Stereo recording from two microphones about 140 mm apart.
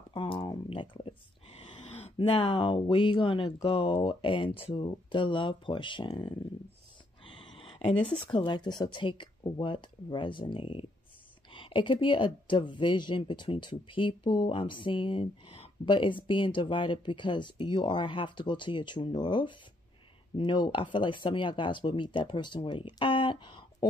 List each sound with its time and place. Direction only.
0.1 s speech: 35° left (ahead or behind)
7.2 s a sound: 35° left (ahead or behind)
8.3 s speech: 35° left (ahead or behind)